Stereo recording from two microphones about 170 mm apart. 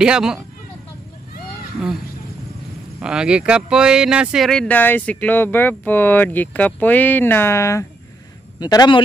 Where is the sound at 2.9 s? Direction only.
5° right (ahead or behind).